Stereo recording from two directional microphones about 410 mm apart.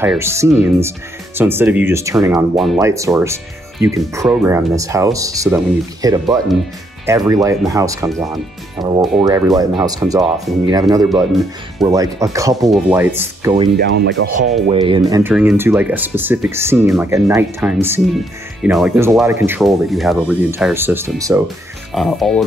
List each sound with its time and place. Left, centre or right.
0.0 s speech: centre
14.0 s speech: right
14.7 s speech: centre